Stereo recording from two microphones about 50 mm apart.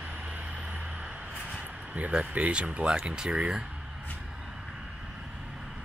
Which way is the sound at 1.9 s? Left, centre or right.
Right.